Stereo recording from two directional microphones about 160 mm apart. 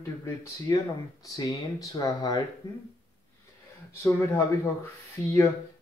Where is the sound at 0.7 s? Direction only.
25° left (ahead or behind).